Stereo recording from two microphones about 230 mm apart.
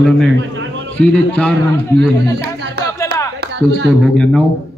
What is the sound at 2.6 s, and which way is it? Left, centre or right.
Music, right.